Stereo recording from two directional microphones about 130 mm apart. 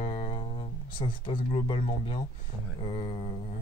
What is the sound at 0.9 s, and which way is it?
Speech, 40° left (ahead or behind).